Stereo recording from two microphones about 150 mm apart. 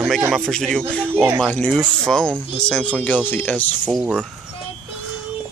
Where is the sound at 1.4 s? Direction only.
10° left (ahead or behind).